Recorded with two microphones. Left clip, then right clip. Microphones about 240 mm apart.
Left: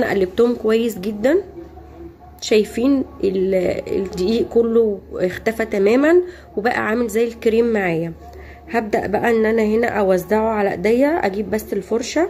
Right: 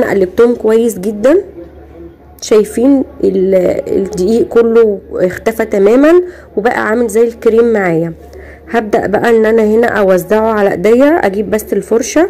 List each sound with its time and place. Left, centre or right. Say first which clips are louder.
0.0 s speech: right 8 dB; centre
2.6 s a woman's voice: right 8 dB; centre